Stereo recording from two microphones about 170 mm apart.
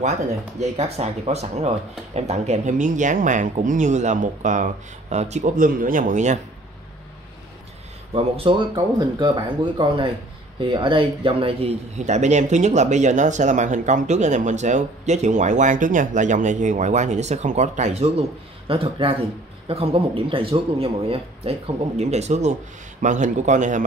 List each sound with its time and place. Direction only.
0.6 s speech: 40° right (ahead or behind)
8.1 s speech: 35° right (ahead or behind)